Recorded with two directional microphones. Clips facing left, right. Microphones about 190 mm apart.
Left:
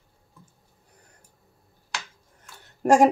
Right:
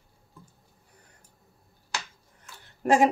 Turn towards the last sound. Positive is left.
turn(degrees=45)  # may be behind; listen again after turning